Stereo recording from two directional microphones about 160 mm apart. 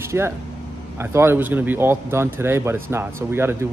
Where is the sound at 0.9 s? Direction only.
15° right (ahead or behind).